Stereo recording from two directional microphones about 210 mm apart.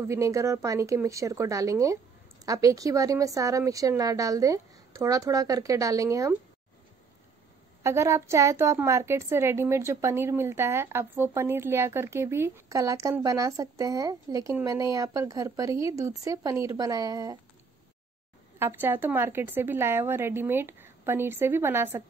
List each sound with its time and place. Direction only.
0.1 s a woman's voice: 15° right (ahead or behind)
7.8 s a woman's voice: 15° right (ahead or behind)
18.6 s a woman's voice: 10° right (ahead or behind)